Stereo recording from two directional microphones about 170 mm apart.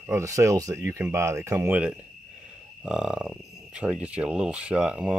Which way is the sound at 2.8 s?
5° right (ahead or behind).